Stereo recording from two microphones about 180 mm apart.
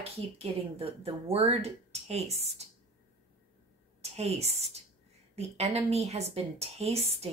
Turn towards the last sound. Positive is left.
turn(degrees=-35)  # may be behind; listen again after turning